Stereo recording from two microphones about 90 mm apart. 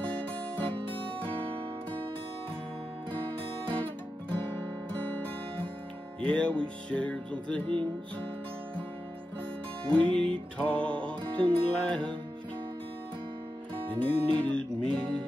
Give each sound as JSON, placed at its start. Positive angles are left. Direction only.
{"t": 3.1, "sound": "music", "side_deg": -65}
{"t": 6.2, "sound": "music", "side_deg": 10}
{"t": 9.8, "sound": "music", "side_deg": -65}
{"t": 10.1, "sound": "music", "side_deg": 15}
{"t": 11.3, "sound": "music", "side_deg": -70}
{"t": 11.8, "sound": "music", "side_deg": 10}
{"t": 13.8, "sound": "music", "side_deg": -75}
{"t": 14.4, "sound": "speech", "side_deg": 15}